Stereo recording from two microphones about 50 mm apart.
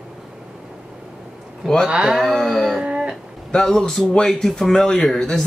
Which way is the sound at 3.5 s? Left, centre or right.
Centre.